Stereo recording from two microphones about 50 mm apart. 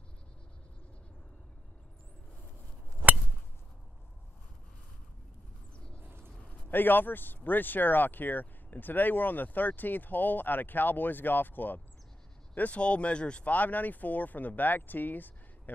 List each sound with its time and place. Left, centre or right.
5.9 s vehicle: right
6.7 s speech: left
12.5 s speech: left
13.5 s speech: left